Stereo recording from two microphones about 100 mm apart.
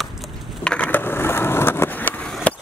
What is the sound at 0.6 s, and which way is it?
Skateboard, 10° left (ahead or behind).